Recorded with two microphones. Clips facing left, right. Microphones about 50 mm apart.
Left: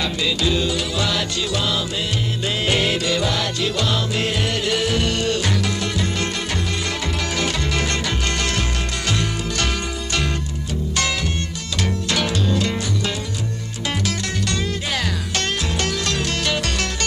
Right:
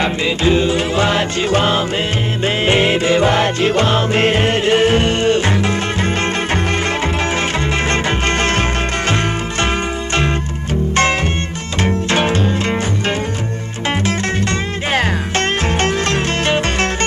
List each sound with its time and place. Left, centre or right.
0.0 s music: right
7.9 s music: right
11.8 s music: right
14.0 s music: right